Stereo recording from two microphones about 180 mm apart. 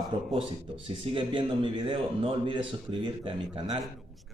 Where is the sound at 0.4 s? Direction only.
30° right (ahead or behind).